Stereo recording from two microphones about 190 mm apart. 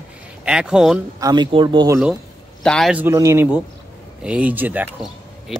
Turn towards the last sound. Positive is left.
turn(degrees=-5)  # may be behind; listen again after turning